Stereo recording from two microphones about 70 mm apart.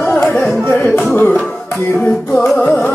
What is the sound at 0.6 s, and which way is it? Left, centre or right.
Music, left.